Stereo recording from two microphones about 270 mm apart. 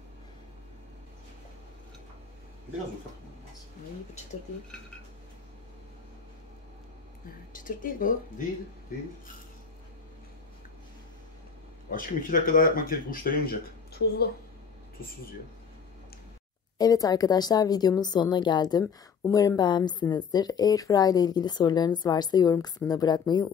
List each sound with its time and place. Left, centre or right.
7.5 s speech: left
11.9 s speech: left
16.7 s speech: centre